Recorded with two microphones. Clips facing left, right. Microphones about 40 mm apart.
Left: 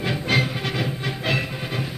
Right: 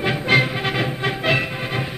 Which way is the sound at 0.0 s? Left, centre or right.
Right.